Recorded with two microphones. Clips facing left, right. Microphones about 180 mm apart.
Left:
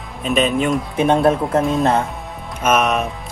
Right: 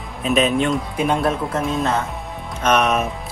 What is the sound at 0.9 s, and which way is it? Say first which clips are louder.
Speech: left 8 dB; 25° left (ahead or behind).